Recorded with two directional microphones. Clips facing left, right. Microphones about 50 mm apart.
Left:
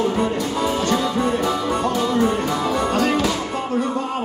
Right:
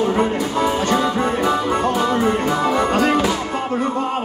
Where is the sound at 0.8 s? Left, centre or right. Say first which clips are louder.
Right 2 dB; right.